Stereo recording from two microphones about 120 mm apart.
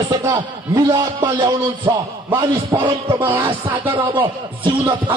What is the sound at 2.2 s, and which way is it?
A man's voice, 15° right (ahead or behind).